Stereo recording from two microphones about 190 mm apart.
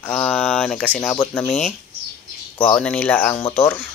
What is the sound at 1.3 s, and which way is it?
Speech, 5° left (ahead or behind).